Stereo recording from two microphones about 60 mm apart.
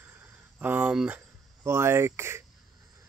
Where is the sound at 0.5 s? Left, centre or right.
Right.